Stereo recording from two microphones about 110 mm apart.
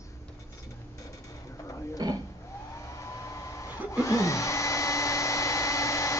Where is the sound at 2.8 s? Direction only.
30° left (ahead or behind).